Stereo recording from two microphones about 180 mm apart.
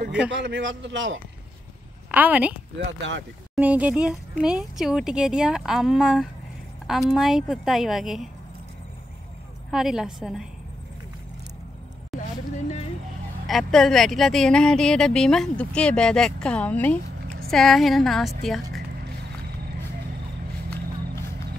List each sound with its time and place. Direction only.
0.3 s a man's voice: 85° right
2.0 s a woman's voice: 10° right (ahead or behind)
3.0 s a man's voice: 90° right
3.5 s speech: 10° right (ahead or behind)
9.7 s speech: centre (ahead or behind)
12.1 s vehicle: centre (ahead or behind)
13.5 s speech: centre (ahead or behind)